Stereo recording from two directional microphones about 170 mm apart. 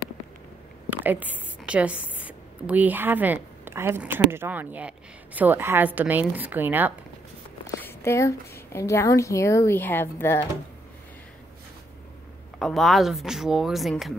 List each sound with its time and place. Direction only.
1.0 s a woman's voice: 10° right (ahead or behind)
7.8 s a woman's voice: 15° left (ahead or behind)
12.5 s speech: centre (ahead or behind)